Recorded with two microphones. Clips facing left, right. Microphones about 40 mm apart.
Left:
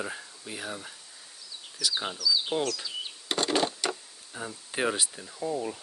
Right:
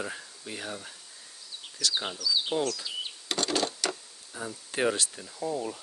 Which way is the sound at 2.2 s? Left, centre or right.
Right.